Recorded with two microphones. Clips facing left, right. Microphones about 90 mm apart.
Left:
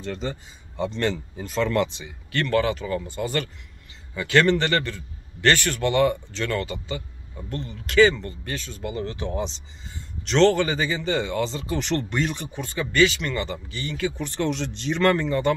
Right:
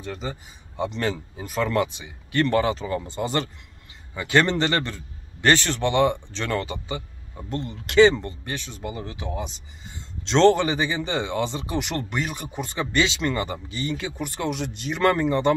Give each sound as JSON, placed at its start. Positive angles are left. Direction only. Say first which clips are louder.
{"t": 0.0, "sound": "a man's voice", "louder": "left 2 dB", "side_deg": -5}
{"t": 12.6, "sound": "a man's voice", "louder": "left 4 dB", "side_deg": -20}
{"t": 14.2, "sound": "speech", "louder": "left 1 dB", "side_deg": -10}